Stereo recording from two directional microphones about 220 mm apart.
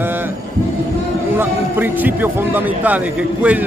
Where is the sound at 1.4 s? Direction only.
10° right (ahead or behind).